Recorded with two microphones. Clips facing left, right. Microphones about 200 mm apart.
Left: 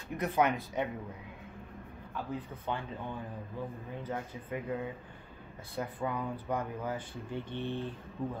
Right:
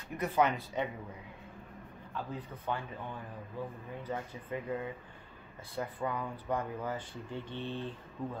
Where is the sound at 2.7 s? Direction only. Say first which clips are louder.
Even; 20° left (ahead or behind).